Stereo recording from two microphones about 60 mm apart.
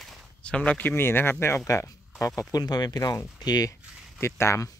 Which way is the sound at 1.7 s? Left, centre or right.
Left.